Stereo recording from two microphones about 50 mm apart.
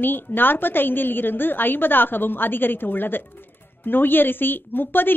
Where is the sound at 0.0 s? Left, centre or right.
Left.